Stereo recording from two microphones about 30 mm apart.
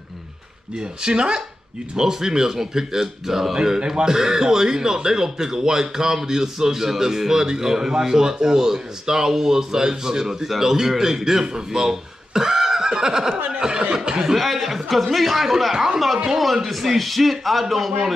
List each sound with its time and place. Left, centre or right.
0.7 s speech: right
2.0 s a man's voice: centre
13.5 s chuckle: right
14.2 s a man's voice: centre